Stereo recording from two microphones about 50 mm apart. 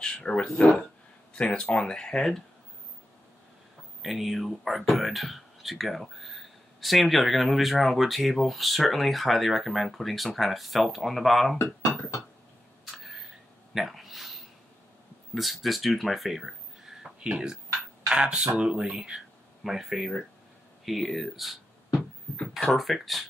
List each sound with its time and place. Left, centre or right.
0.0 s speech: centre
4.0 s speech: centre
11.5 s speech: left
12.8 s a sound: centre
15.3 s speech: centre